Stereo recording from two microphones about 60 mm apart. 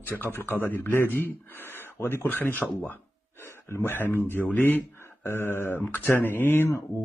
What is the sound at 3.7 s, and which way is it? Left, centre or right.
Speech, left.